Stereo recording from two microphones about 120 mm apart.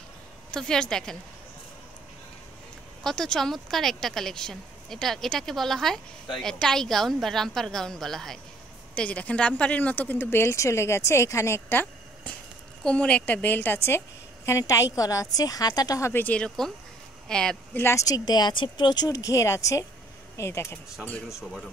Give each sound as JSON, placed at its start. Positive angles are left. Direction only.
{"t": 0.5, "sound": "speech", "side_deg": 5}
{"t": 3.0, "sound": "a woman's voice", "side_deg": 5}
{"t": 16.1, "sound": "speech", "side_deg": 15}
{"t": 17.7, "sound": "speech", "side_deg": 25}